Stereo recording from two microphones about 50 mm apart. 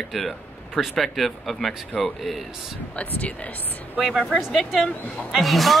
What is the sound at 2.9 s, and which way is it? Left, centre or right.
Speech, left.